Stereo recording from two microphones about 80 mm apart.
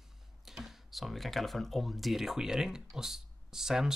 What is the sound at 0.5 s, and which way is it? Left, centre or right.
Speech, centre.